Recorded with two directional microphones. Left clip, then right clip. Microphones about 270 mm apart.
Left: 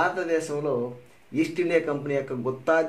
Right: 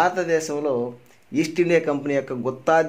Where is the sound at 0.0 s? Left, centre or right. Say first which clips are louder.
Right 4 dB; right.